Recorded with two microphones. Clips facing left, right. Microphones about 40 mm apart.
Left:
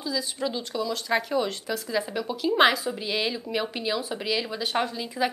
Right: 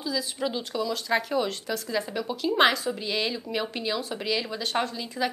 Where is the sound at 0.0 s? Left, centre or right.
Centre.